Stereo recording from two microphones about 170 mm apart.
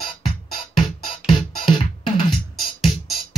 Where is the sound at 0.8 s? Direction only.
30° left (ahead or behind).